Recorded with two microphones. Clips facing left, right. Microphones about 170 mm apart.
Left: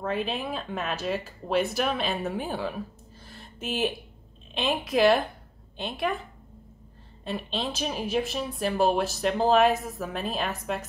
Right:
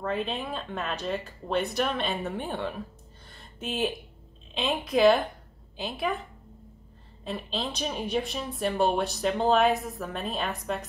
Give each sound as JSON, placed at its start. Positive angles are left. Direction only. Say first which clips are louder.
{"t": 0.0, "sound": "speech", "louder": "left 1 dB", "side_deg": 5}
{"t": 3.3, "sound": "a sound", "louder": "left 2 dB", "side_deg": 0}
{"t": 4.6, "sound": "speech", "louder": "even", "side_deg": 0}
{"t": 7.2, "sound": "speech", "louder": "left 1 dB", "side_deg": 0}